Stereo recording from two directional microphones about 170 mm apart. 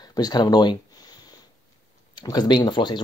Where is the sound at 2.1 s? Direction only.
25° left (ahead or behind).